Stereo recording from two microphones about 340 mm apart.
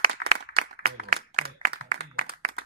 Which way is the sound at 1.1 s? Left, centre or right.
Right.